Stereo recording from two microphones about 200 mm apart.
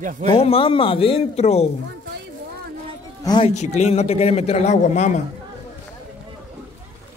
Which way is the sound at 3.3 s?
25° left (ahead or behind).